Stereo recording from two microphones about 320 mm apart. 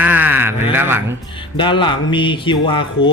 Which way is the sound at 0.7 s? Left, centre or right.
Centre.